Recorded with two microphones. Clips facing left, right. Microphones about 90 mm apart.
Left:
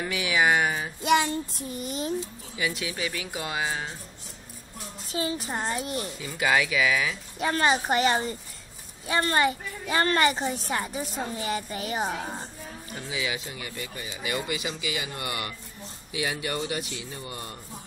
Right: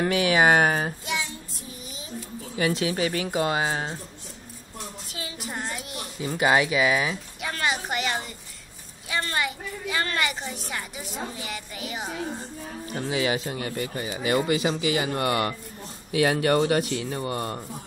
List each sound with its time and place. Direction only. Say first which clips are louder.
0.0 s speech: right 5 dB; 50° right (ahead or behind)
1.0 s child singing: left 9 dB; 55° left (ahead or behind)
2.7 s speech: right 7 dB; 40° right (ahead or behind)
5.1 s a child's voice: left 7 dB; 30° left (ahead or behind)
6.2 s speech: right 4 dB; 30° right (ahead or behind)
7.3 s a child's voice: left 7 dB; 35° left (ahead or behind)
13.0 s speech: right 7 dB; 45° right (ahead or behind)